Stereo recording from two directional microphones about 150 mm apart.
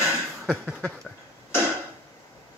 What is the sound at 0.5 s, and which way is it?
Speech, 10° right (ahead or behind).